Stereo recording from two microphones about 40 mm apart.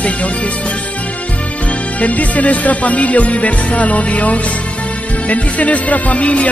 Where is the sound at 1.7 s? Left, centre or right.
Left.